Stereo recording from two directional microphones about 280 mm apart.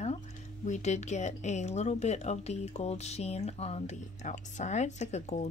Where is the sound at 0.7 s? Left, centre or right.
Left.